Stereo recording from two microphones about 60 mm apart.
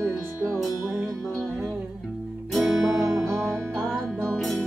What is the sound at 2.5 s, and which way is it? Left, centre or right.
Music, centre.